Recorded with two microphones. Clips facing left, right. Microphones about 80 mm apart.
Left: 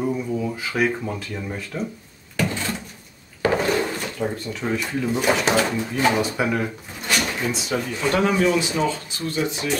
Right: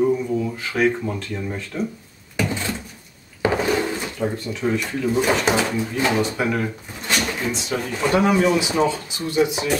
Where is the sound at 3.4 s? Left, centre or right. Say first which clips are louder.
Even; centre.